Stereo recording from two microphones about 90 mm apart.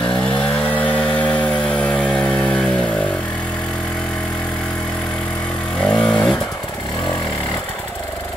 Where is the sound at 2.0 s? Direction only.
5° left (ahead or behind).